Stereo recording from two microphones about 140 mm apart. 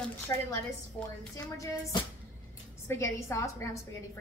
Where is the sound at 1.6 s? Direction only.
25° left (ahead or behind).